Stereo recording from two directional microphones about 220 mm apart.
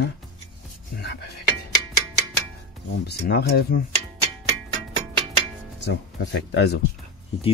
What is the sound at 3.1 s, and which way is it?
Speech, 45° left (ahead or behind).